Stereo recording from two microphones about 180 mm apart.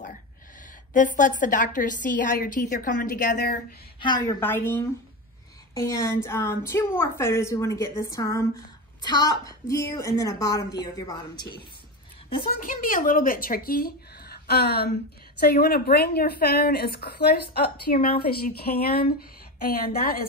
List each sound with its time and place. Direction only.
0.9 s a woman's voice: 45° left (ahead or behind); by 3.5 s 60° left (ahead or behind)
4.0 s a woman's voice: 20° left (ahead or behind)
12.5 s speech: 50° left (ahead or behind)
18.7 s a woman's voice: 45° left (ahead or behind)
19.6 s speech: 55° left (ahead or behind)